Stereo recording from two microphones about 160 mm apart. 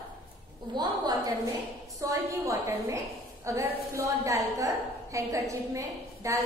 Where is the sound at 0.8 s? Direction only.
25° right (ahead or behind).